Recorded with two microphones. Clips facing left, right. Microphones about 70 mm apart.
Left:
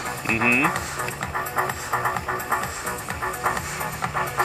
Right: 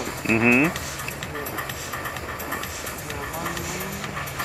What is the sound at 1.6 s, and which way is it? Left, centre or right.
Music, left.